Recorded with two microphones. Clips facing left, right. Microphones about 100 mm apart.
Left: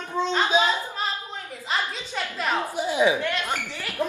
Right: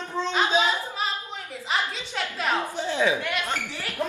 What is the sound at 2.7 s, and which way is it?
Speech, 15° left (ahead or behind).